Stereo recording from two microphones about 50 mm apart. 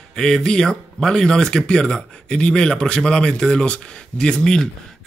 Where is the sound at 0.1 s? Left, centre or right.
Centre.